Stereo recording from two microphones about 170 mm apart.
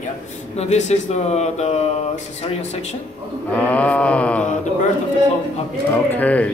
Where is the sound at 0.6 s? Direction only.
40° left (ahead or behind).